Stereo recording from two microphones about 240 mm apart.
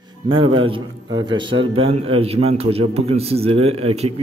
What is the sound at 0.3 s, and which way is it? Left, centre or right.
A man's voice, right.